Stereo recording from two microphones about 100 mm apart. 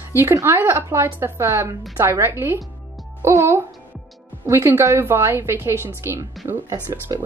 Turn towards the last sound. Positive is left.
turn(degrees=-40)  # may be behind; listen again after turning